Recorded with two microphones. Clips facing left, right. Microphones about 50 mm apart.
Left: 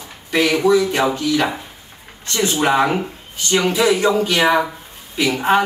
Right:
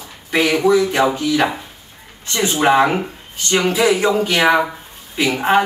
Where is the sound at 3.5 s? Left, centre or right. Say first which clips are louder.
Right 1 dB; right.